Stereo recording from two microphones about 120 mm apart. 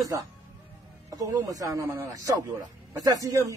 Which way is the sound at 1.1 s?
30° right (ahead or behind).